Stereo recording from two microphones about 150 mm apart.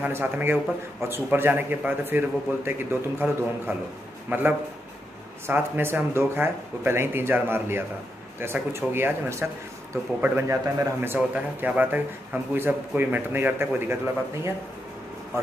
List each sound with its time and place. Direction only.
0.0 s a man's voice: 15° right (ahead or behind)